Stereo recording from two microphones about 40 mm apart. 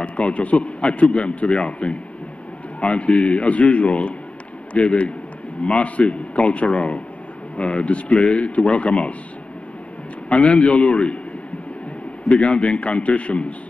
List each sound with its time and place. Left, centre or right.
0.0 s a man's voice: left
10.3 s a man's voice: left
12.3 s a man's voice: left